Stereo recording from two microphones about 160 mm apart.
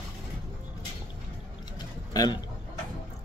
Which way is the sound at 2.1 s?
25° left (ahead or behind).